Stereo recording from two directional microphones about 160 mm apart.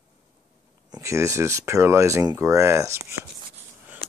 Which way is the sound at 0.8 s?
20° right (ahead or behind).